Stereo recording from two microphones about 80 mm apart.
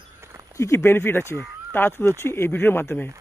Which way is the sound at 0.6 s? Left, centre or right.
Left.